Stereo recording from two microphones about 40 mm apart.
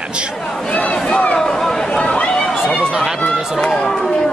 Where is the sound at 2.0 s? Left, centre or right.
Left.